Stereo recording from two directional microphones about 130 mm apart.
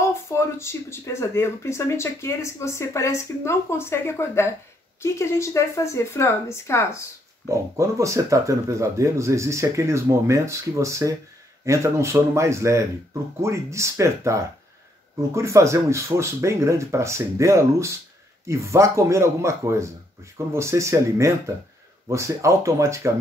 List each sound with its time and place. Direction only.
0.0 s speech: 20° left (ahead or behind)
7.4 s speech: 25° right (ahead or behind)